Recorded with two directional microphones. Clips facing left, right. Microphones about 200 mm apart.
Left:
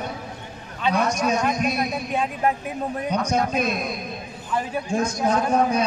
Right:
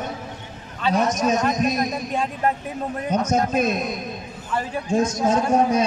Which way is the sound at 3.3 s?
45° right (ahead or behind).